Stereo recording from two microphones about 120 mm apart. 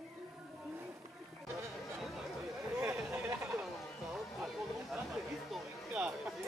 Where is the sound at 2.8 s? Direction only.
20° right (ahead or behind).